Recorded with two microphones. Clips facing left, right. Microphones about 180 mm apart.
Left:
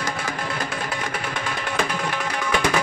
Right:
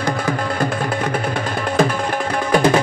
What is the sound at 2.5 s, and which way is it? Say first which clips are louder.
Music: right 8 dB; 40° right (ahead or behind).